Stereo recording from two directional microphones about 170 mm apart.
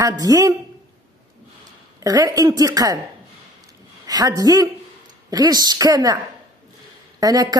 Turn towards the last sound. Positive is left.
turn(degrees=-20)  # may be behind; listen again after turning